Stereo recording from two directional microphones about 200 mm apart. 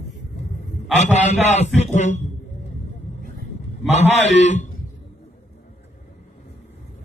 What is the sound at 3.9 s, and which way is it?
Speech, 35° left (ahead or behind).